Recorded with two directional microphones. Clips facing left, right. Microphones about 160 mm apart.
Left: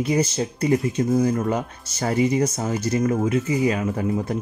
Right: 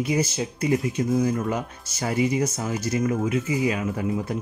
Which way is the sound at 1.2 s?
40° left (ahead or behind).